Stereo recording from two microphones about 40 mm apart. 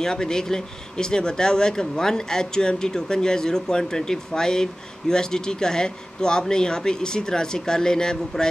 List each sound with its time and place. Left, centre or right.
0.0 s a man's voice: centre